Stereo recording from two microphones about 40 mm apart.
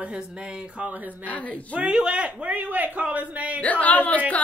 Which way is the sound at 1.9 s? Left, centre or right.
Right.